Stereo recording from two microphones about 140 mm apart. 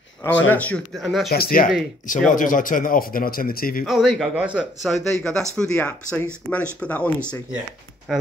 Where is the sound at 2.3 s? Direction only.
75° left (ahead or behind); by 3.9 s 90° left.